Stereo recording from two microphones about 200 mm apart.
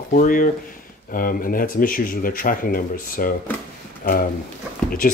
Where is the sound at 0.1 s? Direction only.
45° left (ahead or behind).